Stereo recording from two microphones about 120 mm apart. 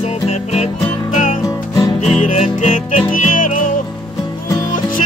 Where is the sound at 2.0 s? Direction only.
80° left.